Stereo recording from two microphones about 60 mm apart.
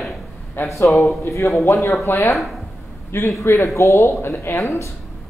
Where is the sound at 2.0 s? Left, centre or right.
Left.